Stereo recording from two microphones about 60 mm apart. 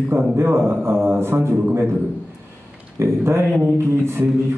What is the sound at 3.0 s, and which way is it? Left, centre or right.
A man's voice, right.